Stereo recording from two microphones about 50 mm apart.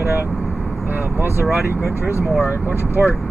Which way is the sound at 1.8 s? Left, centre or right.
Left.